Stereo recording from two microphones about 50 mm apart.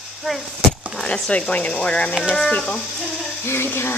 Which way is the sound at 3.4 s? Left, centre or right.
Left.